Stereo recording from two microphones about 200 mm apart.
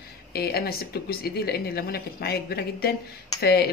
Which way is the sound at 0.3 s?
50° left (ahead or behind).